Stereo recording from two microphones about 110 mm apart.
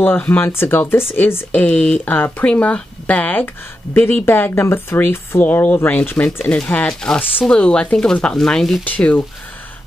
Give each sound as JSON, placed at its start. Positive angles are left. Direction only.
{"t": 0.0, "sound": "speech", "side_deg": 20}
{"t": 8.8, "sound": "speech", "side_deg": 15}